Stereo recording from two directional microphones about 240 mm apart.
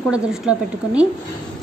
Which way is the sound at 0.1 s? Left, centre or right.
Centre.